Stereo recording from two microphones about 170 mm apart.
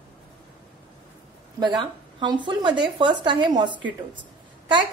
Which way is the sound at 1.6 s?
25° right (ahead or behind).